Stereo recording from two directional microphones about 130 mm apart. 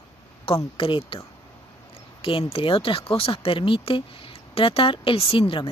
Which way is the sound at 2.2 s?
45° left (ahead or behind).